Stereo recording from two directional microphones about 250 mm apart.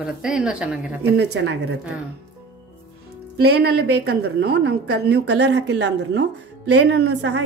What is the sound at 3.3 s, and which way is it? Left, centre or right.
A woman's voice, right.